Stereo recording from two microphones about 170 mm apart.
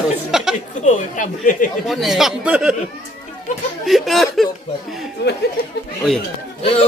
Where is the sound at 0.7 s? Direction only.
45° left (ahead or behind).